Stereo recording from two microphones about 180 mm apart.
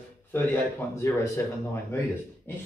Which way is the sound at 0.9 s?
15° left (ahead or behind).